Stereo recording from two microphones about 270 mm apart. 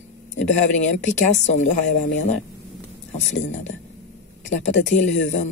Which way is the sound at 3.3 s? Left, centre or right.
Left.